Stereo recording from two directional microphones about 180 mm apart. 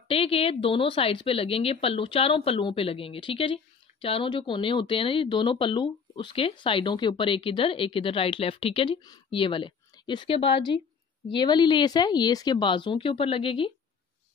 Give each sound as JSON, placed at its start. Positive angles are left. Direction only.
{"t": 0.1, "sound": "speech", "side_deg": 30}